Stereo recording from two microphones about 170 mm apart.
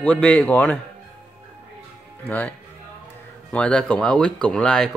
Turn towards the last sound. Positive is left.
turn(degrees=5)  # may be behind; listen again after turning